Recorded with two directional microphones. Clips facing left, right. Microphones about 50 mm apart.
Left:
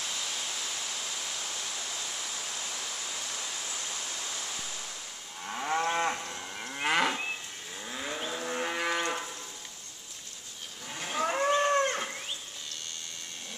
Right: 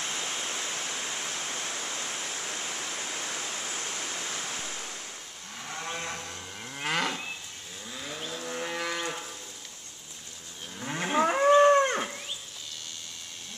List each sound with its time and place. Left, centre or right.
0.0 s waterfall: right
5.5 s moo: left
6.1 s moo: centre
7.9 s livestock: centre
10.8 s moo: right
11.3 s whale vocalization: centre